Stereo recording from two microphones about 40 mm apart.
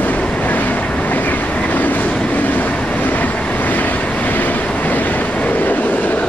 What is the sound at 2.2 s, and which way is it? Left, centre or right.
Vehicle, left.